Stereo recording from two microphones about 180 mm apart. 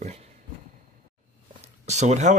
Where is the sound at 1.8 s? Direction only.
40° right (ahead or behind).